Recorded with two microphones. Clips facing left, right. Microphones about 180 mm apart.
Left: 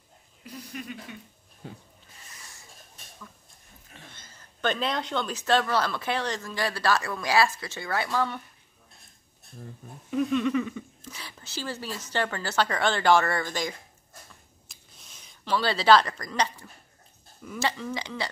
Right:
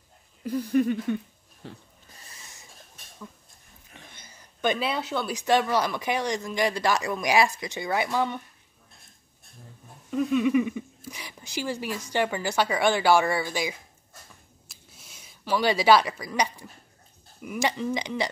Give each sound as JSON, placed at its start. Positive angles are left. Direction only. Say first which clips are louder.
{"t": 0.4, "sound": "speech", "louder": "right 16 dB", "side_deg": -50}
{"t": 3.9, "sound": "speech", "louder": "even", "side_deg": -15}
{"t": 10.1, "sound": "speech", "louder": "right 2 dB", "side_deg": -10}
{"t": 14.7, "sound": "a sound", "louder": "right 2 dB", "side_deg": -5}
{"t": 17.4, "sound": "speech", "louder": "right 3 dB", "side_deg": -15}